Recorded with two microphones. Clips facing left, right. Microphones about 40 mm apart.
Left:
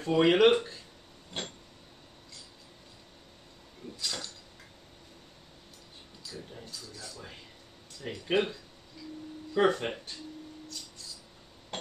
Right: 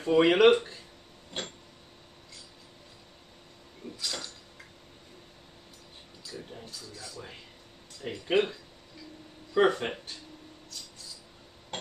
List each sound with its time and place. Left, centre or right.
0.0 s speech: centre
4.0 s cutlery: centre
6.5 s a sound: centre
8.0 s speech: centre
9.5 s speech: centre